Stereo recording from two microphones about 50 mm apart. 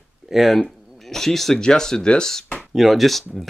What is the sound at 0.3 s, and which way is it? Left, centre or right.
Speech, centre.